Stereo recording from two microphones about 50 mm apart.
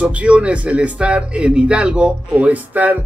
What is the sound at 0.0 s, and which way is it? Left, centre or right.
Speech, right.